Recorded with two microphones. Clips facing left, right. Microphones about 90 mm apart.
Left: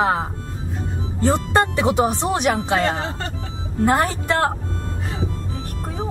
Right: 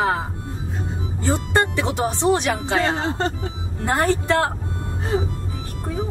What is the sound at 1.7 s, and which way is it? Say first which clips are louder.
A woman's voice: left 4 dB; 15° left (ahead or behind).